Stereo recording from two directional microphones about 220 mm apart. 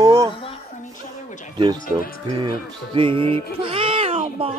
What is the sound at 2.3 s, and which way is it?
Speech, 20° right (ahead or behind).